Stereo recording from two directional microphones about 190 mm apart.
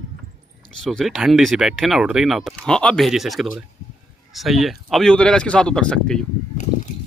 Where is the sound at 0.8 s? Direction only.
Centre (ahead or behind).